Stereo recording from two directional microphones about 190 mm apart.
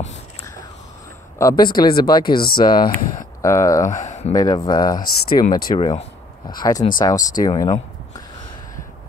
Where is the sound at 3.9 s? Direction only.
40° left (ahead or behind).